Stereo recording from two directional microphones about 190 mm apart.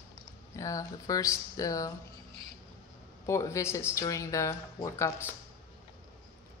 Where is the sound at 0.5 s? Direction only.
15° left (ahead or behind).